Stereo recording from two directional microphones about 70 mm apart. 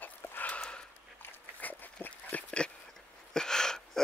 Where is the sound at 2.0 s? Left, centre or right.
Centre.